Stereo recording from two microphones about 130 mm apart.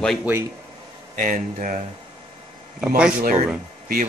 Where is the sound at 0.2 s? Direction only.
15° right (ahead or behind).